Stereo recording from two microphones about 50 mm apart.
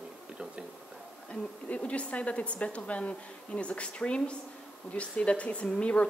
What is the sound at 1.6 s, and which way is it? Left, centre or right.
A woman's voice, left.